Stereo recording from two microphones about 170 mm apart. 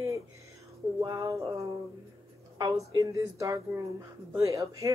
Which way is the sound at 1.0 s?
20° right (ahead or behind).